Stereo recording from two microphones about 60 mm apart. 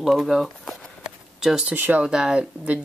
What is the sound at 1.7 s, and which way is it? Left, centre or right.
Speech, right.